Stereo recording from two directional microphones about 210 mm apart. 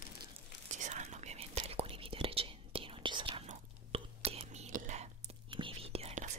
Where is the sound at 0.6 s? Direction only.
35° right (ahead or behind).